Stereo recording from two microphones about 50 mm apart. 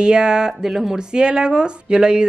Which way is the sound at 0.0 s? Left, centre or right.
Centre.